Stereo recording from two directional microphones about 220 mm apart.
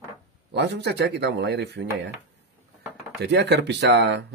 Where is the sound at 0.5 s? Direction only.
50° right (ahead or behind).